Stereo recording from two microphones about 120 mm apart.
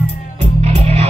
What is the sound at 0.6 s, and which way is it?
Music, 60° right (ahead or behind).